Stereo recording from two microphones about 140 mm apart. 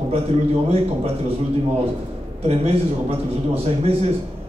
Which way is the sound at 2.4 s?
45° right (ahead or behind).